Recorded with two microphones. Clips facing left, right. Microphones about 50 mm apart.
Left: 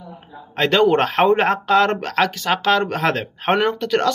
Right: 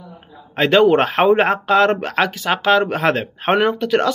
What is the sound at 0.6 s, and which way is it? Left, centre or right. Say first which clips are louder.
Speech: right 3 dB; centre.